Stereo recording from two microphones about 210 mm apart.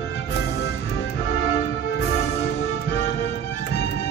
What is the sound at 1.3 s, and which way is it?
Music, 60° left (ahead or behind).